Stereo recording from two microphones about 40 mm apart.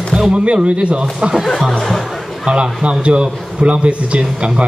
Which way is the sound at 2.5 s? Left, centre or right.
Right.